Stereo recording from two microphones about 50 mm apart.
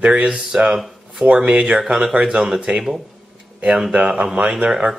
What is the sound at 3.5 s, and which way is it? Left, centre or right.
Speech, right.